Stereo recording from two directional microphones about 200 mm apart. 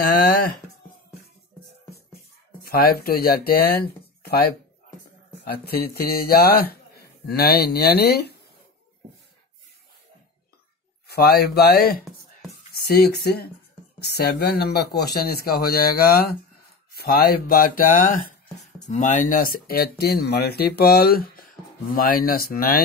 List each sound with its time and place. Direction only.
0.0 s speech: 50° left (ahead or behind)
2.6 s speech: 50° left (ahead or behind)
3.8 s a sound: 50° left (ahead or behind)
5.5 s speech: 50° left (ahead or behind)
11.1 s speech: 50° left (ahead or behind)